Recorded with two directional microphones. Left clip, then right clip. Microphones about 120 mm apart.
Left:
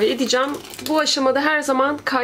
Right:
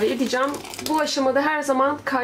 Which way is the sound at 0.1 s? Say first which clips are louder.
Left 3 dB; 40° left (ahead or behind).